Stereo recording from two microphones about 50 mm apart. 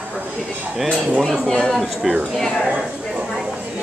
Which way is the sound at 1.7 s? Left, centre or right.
Centre.